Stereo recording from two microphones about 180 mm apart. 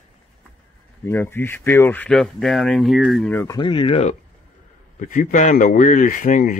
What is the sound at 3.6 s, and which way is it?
Speech, 30° left (ahead or behind).